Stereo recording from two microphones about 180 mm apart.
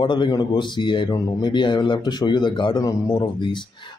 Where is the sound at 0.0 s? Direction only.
25° left (ahead or behind).